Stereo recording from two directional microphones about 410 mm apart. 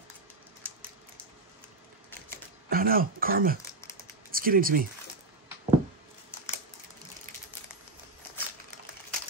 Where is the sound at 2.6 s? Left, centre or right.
Right.